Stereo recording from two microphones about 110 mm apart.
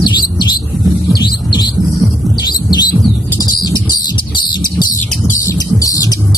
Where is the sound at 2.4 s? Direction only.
40° left (ahead or behind).